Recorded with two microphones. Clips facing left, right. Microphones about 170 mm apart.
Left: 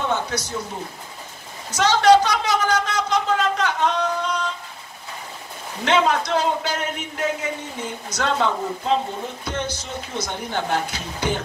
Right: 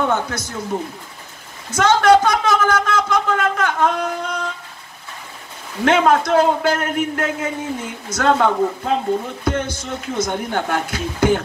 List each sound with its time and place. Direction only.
0.0 s speech: 50° right (ahead or behind)
1.7 s a sound: 50° right (ahead or behind)
5.9 s speech: 50° right (ahead or behind)